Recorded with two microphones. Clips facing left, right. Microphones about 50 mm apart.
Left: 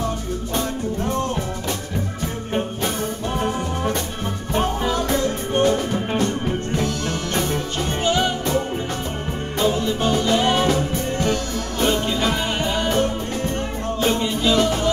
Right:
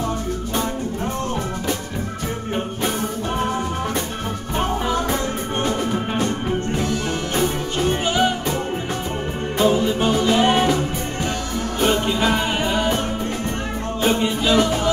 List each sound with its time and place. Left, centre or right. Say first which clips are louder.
4.6 s music: even; right
14.0 s music: right 1 dB; centre